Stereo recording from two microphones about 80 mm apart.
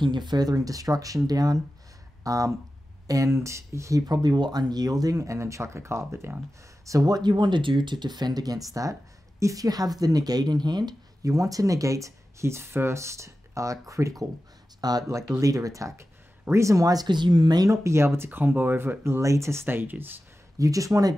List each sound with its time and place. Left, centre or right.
0.0 s speech: right
4.0 s speech: right
6.9 s speech: right
11.2 s speech: right
14.8 s speech: right
17.6 s speech: right
20.5 s speech: right